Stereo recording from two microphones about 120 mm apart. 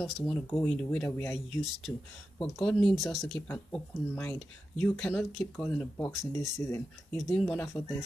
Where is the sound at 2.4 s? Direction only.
5° left (ahead or behind).